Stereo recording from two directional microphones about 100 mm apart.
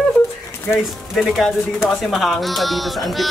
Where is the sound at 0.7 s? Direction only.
Centre (ahead or behind).